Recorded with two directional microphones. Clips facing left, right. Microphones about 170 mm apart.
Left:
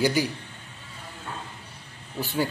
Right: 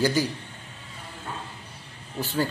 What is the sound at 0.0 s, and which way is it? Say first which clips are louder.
Speech: even; 10° left (ahead or behind).